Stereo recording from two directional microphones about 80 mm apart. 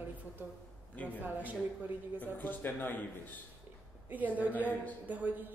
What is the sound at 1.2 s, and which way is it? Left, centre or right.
Speech, right.